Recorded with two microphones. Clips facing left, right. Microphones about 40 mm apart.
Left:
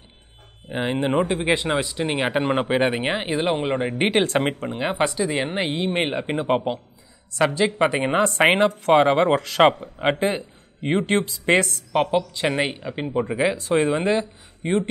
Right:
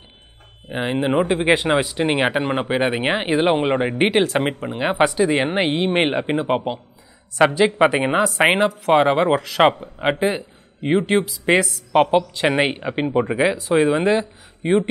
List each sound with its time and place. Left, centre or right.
0.7 s speech: centre
2.3 s speech: centre
3.0 s speech: right
4.0 s speech: centre
4.7 s speech: centre
6.3 s speech: centre
7.3 s speech: right
11.9 s speech: right